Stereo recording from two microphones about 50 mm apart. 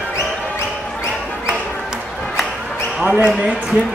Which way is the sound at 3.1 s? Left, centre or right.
Right.